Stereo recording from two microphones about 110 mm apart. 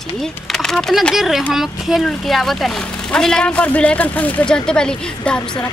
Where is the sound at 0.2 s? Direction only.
5° left (ahead or behind).